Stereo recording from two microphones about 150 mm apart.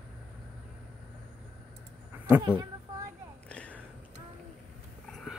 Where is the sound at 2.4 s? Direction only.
30° right (ahead or behind).